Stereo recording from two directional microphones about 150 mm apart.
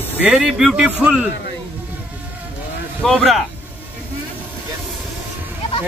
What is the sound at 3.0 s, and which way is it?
Speech, centre (ahead or behind).